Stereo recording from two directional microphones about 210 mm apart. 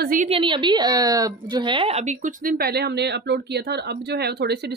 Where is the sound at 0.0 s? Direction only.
40° right (ahead or behind).